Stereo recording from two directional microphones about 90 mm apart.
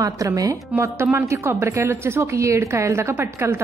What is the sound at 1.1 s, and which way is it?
A woman's voice, 30° right (ahead or behind).